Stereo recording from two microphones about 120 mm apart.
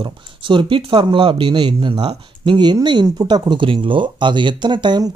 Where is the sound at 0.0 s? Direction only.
40° right (ahead or behind).